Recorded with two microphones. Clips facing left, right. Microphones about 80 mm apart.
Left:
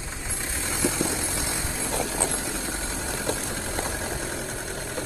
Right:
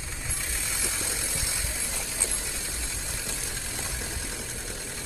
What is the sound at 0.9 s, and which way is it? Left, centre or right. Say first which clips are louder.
Vehicle: left 7 dB; left.